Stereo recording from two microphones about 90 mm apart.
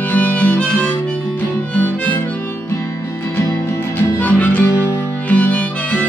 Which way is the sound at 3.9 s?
15° left (ahead or behind).